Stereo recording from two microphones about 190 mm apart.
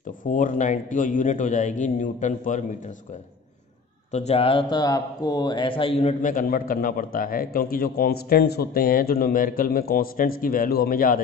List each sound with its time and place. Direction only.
0.2 s a man's voice: 45° left (ahead or behind)
4.1 s speech: 35° left (ahead or behind)